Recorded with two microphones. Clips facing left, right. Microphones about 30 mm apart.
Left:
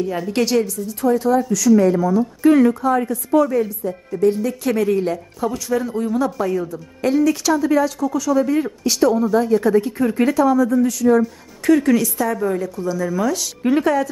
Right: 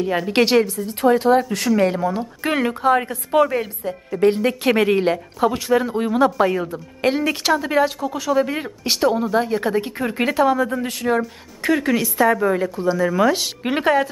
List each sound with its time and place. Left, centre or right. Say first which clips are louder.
0.0 s a woman's voice: right 2 dB; right
11.6 s speech: left 4 dB; right